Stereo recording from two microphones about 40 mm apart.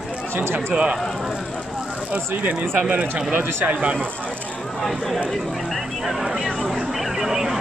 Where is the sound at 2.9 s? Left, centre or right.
Right.